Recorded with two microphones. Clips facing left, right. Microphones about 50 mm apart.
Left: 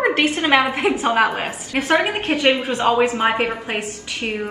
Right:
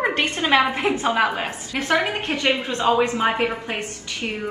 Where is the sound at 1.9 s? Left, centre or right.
Left.